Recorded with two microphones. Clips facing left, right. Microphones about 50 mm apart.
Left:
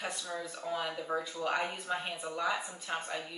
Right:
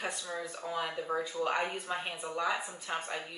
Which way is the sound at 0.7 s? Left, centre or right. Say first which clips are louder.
Even; centre.